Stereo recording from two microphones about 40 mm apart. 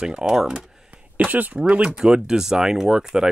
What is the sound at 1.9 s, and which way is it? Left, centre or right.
Speech, centre.